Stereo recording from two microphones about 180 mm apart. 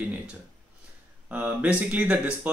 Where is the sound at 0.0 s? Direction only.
10° right (ahead or behind).